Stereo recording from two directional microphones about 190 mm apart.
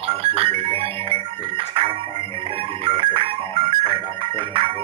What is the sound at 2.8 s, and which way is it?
Music, 30° right (ahead or behind).